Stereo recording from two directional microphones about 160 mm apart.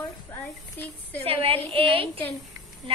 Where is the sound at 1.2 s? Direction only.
35° right (ahead or behind).